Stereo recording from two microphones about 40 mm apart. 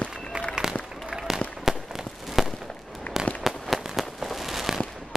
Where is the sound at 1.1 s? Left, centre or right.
Centre.